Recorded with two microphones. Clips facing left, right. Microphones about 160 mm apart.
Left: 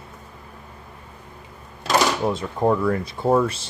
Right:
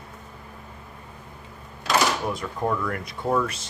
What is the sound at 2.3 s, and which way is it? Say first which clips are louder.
Speech: left 6 dB; 25° left (ahead or behind).